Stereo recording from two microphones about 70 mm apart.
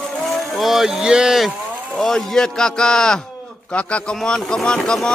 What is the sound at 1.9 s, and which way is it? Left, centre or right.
A man's voice, centre.